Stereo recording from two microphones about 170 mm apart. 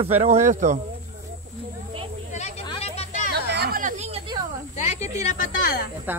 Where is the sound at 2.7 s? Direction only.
35° left (ahead or behind).